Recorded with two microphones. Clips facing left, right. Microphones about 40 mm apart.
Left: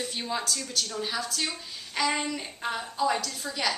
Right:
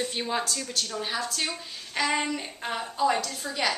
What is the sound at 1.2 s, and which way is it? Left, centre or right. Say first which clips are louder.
Speech: right 1 dB; centre.